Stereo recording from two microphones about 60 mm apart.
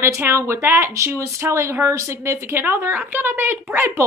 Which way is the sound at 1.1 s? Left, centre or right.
Right.